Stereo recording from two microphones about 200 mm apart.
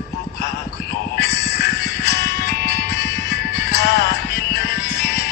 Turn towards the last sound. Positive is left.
turn(degrees=55)  # may be behind; listen again after turning